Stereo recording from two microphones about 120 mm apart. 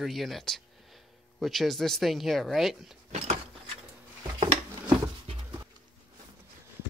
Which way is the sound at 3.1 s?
70° right (ahead or behind).